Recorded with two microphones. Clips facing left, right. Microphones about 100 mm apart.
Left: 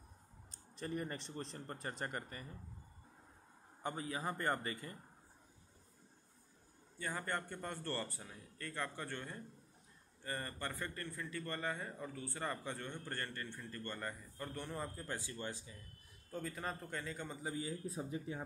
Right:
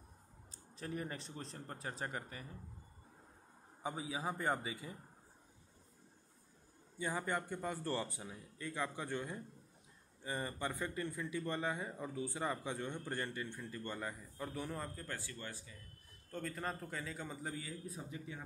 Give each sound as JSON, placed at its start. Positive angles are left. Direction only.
{"t": 0.5, "sound": "a man's voice", "side_deg": 0}
{"t": 3.8, "sound": "speech", "side_deg": -5}
{"t": 7.0, "sound": "speech", "side_deg": -10}
{"t": 15.0, "sound": "speech", "side_deg": 20}
{"t": 16.3, "sound": "a man's voice", "side_deg": 5}
{"t": 17.6, "sound": "speech", "side_deg": 25}